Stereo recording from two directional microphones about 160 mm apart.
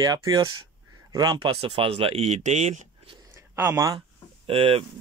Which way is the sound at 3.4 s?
15° right (ahead or behind).